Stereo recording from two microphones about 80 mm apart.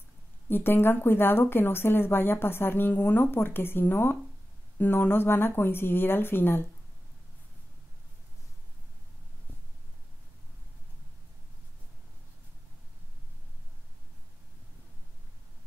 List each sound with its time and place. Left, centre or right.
0.5 s speech: left